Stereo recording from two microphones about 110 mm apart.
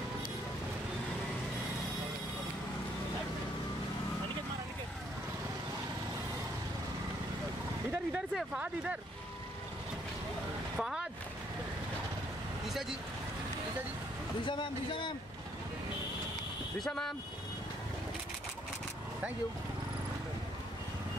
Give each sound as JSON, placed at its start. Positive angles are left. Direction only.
{"t": 8.4, "sound": "speech", "side_deg": -10}
{"t": 10.8, "sound": "vehicle", "side_deg": -5}
{"t": 14.4, "sound": "a man's voice", "side_deg": 45}
{"t": 16.8, "sound": "speech", "side_deg": 5}